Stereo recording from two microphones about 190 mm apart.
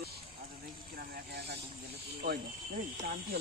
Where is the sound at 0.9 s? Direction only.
60° right (ahead or behind).